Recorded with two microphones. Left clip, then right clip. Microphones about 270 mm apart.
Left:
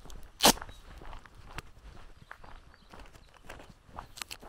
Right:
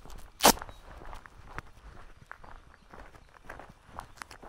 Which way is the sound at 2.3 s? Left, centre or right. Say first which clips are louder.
Right 1 dB; centre.